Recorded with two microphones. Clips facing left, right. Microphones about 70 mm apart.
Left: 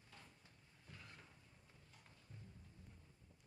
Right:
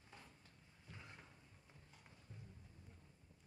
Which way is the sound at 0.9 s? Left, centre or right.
Right.